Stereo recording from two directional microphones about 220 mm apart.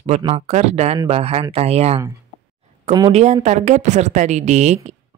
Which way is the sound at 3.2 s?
30° right (ahead or behind).